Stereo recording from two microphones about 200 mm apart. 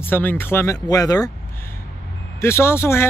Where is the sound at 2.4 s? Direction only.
15° left (ahead or behind).